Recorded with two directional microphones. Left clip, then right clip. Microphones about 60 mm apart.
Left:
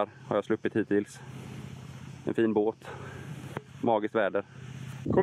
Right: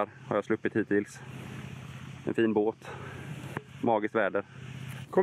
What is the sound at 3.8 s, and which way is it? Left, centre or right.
Speech, centre.